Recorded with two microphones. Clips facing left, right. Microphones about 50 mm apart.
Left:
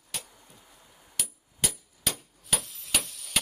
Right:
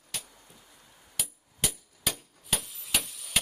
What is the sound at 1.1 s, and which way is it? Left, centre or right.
Hammer, centre.